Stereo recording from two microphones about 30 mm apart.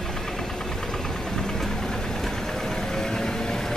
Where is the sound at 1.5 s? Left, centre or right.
Centre.